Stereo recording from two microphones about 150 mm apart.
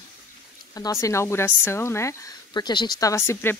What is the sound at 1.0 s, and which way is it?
Speech, 15° left (ahead or behind).